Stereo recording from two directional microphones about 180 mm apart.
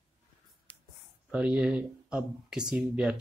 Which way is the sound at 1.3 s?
5° right (ahead or behind).